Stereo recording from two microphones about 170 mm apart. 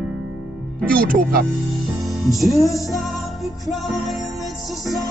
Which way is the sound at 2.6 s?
20° left (ahead or behind).